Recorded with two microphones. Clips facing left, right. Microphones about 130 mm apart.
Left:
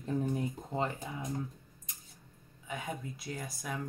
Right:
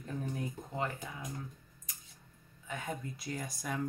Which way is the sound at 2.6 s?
5° left (ahead or behind).